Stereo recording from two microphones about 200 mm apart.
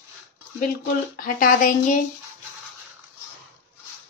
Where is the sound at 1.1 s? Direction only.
45° left (ahead or behind).